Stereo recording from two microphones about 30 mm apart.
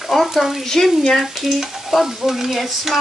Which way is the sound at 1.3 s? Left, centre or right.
Centre.